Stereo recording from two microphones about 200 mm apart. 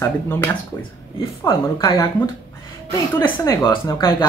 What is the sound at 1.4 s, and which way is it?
Speech, 15° left (ahead or behind).